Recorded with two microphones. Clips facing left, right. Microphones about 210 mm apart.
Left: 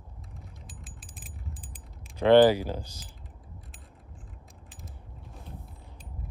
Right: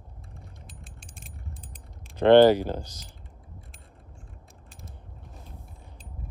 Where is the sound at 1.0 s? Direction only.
Centre (ahead or behind).